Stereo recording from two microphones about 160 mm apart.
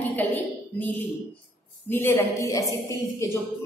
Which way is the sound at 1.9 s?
15° left (ahead or behind).